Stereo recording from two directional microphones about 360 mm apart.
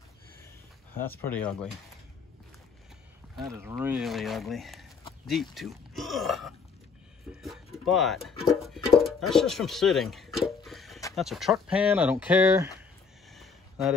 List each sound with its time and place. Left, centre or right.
1.2 s speech: centre
3.3 s speech: centre
13.3 s a sound: centre